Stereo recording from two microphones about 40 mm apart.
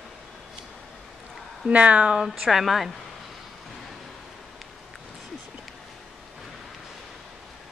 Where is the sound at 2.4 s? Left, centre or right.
Centre.